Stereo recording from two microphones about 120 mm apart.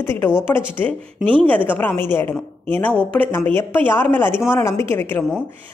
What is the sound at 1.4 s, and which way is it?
A woman's voice, 15° left (ahead or behind).